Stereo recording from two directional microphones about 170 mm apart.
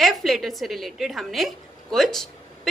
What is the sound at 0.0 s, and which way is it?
A woman's voice, centre (ahead or behind).